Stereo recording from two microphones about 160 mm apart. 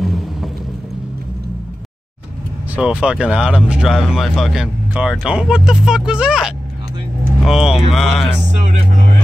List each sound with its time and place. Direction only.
0.0 s vehicle: centre (ahead or behind)
2.7 s speech: 5° right (ahead or behind)
8.6 s speech: 50° right (ahead or behind)